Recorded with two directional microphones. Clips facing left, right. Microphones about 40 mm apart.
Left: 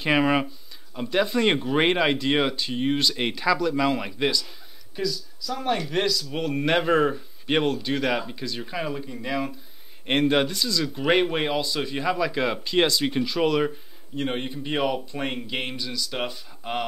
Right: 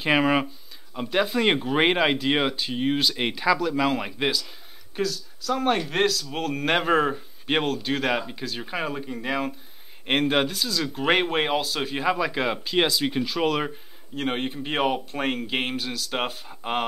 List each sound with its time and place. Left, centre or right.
0.0 s speech: centre
5.5 s speech: right
6.6 s speech: centre; by 9.5 s right
10.0 s speech: centre
14.2 s speech: right
15.7 s speech: right
16.3 s speech: right